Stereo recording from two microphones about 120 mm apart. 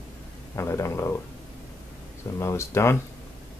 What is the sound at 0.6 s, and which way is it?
Speech, 25° left (ahead or behind).